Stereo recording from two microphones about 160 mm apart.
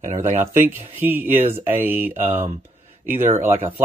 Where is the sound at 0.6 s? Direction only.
15° right (ahead or behind).